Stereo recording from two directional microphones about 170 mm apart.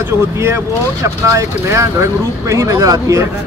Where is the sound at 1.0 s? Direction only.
15° right (ahead or behind).